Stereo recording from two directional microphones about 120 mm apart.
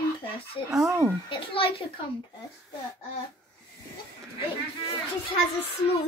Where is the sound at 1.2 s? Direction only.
50° left (ahead or behind).